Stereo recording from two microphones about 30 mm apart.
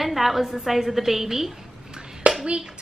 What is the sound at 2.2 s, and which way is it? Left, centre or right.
Hands, right.